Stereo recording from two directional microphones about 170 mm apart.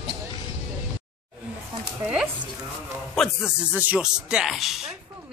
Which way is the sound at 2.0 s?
5° right (ahead or behind).